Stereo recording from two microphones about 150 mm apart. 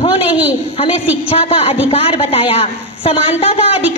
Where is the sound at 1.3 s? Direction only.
40° left (ahead or behind).